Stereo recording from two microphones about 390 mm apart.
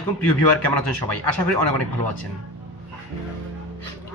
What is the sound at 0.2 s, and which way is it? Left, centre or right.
A man's voice, left.